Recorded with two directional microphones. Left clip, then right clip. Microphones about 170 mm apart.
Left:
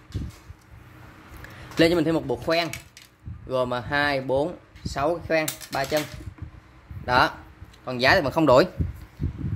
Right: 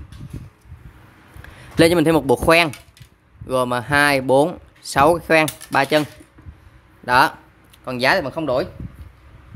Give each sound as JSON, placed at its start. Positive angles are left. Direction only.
{"t": 1.8, "sound": "speech", "side_deg": -35}
{"t": 3.4, "sound": "speech", "side_deg": -35}
{"t": 7.1, "sound": "speech", "side_deg": -30}
{"t": 8.4, "sound": "speech", "side_deg": 20}